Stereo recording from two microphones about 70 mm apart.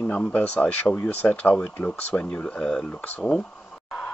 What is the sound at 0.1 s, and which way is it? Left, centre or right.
Speech, left.